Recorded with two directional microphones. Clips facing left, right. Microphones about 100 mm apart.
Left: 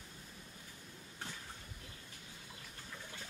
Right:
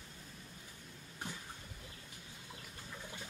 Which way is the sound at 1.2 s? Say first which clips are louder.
Right 3 dB; 15° right (ahead or behind).